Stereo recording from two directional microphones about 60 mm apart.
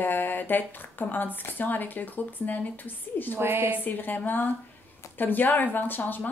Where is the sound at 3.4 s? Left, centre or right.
Right.